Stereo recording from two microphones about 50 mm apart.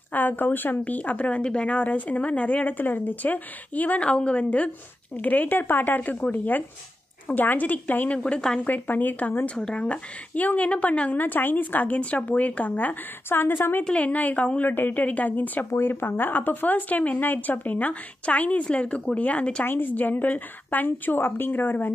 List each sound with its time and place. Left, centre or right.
0.1 s a woman's voice: left
9.6 s a woman's voice: centre
13.3 s a woman's voice: left
13.9 s a woman's voice: left
14.7 s a woman's voice: left
15.7 s speech: left
19.6 s speech: left